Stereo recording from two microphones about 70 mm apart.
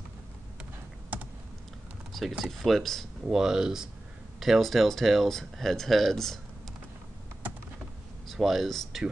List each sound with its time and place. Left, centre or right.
2.1 s speech: centre
3.3 s speech: centre
8.3 s speech: centre